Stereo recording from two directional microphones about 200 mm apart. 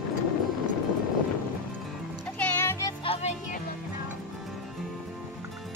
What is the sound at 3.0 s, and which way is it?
Music, 30° left (ahead or behind).